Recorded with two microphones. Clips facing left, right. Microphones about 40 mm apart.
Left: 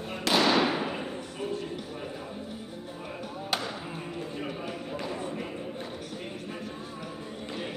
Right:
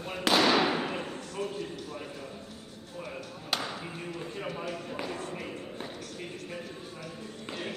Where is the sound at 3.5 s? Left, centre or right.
Centre.